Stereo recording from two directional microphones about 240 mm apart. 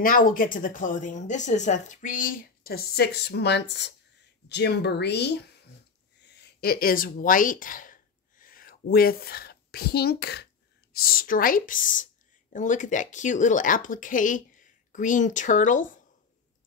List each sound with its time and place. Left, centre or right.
0.0 s speech: left